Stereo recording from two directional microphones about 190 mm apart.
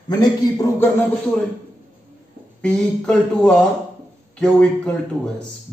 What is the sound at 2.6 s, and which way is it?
Speech, 5° left (ahead or behind).